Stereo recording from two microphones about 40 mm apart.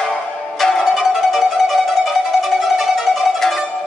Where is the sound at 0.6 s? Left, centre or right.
Centre.